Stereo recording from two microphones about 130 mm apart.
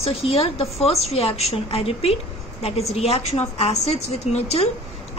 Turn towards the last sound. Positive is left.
turn(degrees=55)  # may be behind; listen again after turning